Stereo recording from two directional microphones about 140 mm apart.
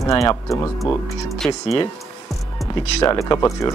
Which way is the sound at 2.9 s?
25° left (ahead or behind).